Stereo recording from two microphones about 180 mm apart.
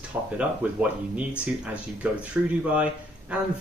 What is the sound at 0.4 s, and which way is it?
Speech, 10° right (ahead or behind).